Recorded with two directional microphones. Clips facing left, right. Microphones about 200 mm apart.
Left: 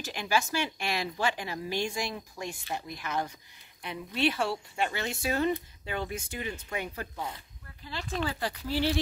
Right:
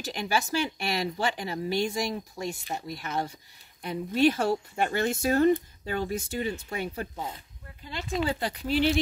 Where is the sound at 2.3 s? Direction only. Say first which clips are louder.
Right 3 dB; 35° right (ahead or behind).